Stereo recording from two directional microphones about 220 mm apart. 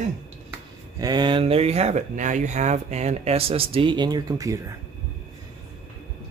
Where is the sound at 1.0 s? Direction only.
20° right (ahead or behind).